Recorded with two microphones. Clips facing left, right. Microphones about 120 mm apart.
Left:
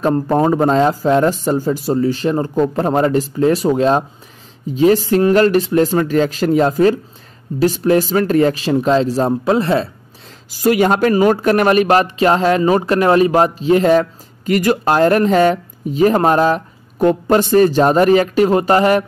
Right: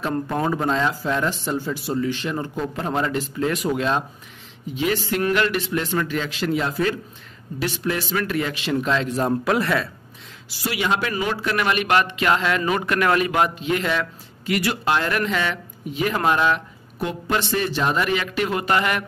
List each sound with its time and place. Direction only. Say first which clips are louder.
0.0 s speech: left 9 dB; 40° left (ahead or behind)
10.6 s speech: left 11 dB; 45° left (ahead or behind)